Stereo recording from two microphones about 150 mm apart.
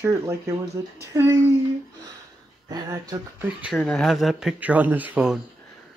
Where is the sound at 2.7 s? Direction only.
25° right (ahead or behind).